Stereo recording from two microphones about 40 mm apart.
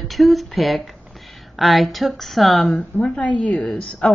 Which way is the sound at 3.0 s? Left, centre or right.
Left.